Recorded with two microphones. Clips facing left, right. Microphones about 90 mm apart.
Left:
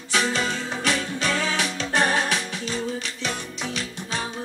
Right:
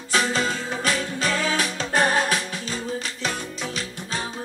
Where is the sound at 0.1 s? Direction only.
40° right (ahead or behind).